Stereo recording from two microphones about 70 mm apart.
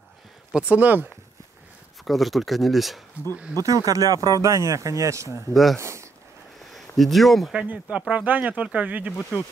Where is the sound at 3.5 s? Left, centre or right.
Right.